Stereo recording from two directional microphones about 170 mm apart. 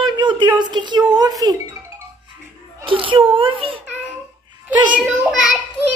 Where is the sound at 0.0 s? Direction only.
25° right (ahead or behind).